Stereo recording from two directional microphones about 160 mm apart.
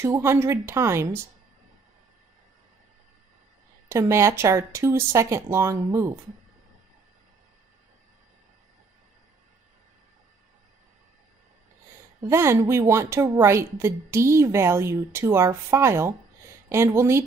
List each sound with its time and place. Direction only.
0.0 s a woman's voice: 15° right (ahead or behind)
3.9 s a woman's voice: 15° right (ahead or behind)
12.2 s a woman's voice: 15° right (ahead or behind)